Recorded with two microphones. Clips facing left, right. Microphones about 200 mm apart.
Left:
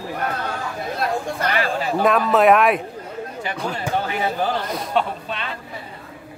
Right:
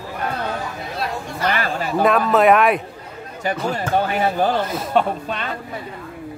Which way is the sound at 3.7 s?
45° right (ahead or behind).